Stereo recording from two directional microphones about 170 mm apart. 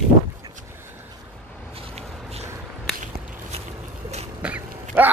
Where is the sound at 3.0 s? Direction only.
40° right (ahead or behind).